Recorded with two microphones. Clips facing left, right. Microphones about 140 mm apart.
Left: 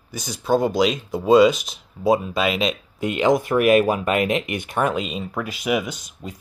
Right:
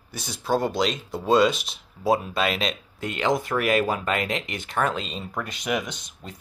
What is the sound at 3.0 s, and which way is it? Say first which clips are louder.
Speech: left 6 dB; 20° left (ahead or behind).